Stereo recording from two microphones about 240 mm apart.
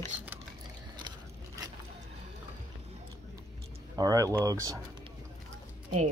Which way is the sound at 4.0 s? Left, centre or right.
Centre.